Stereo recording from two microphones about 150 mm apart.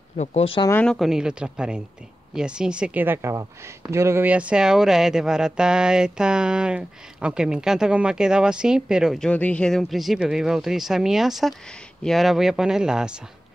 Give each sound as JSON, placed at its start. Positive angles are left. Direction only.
{"t": 0.2, "sound": "speech", "side_deg": 45}
{"t": 0.7, "sound": "speech", "side_deg": 10}
{"t": 0.9, "sound": "speech", "side_deg": -5}